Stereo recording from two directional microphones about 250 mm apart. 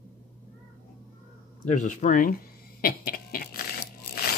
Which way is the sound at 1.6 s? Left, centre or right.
Left.